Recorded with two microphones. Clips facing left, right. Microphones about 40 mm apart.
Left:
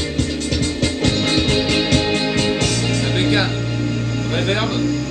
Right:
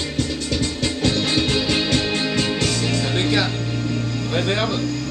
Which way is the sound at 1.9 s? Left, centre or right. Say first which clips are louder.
Left 3 dB; left.